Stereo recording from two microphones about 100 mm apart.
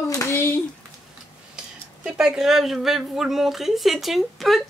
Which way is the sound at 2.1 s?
5° right (ahead or behind).